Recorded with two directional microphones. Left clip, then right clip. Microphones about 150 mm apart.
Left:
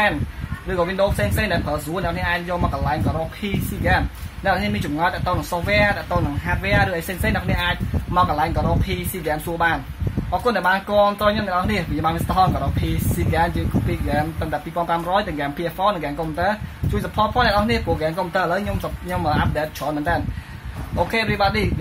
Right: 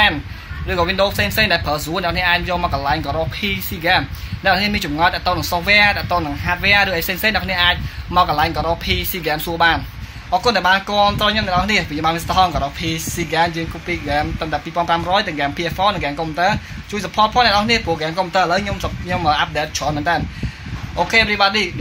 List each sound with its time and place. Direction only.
0.7 s speech: 15° right (ahead or behind)
4.5 s speech: 15° right (ahead or behind)
14.0 s speech: 15° right (ahead or behind)